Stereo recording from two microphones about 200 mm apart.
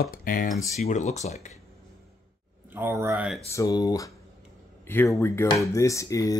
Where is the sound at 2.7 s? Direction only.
10° right (ahead or behind).